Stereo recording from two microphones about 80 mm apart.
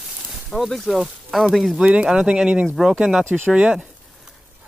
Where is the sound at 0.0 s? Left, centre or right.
Centre.